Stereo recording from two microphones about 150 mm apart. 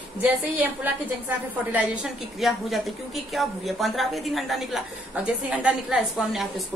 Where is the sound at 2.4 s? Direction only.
Centre (ahead or behind).